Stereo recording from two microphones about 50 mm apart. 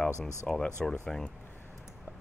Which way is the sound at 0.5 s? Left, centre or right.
Centre.